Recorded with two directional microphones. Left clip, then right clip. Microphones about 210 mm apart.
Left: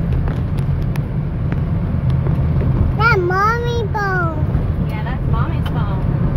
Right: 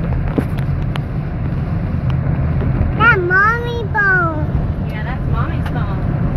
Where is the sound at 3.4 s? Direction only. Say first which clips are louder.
Right 2 dB; 5° right (ahead or behind).